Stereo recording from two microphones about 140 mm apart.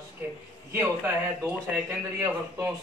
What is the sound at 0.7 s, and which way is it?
Speech, 15° right (ahead or behind).